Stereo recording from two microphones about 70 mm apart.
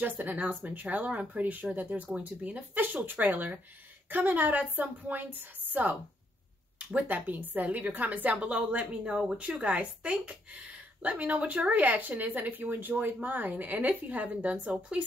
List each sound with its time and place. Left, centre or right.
0.0 s speech: right